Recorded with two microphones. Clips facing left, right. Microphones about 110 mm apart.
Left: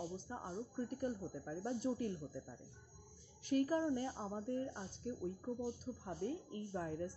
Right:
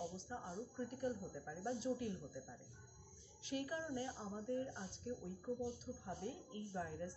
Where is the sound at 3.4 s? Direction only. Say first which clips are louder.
Left 9 dB; 45° left (ahead or behind).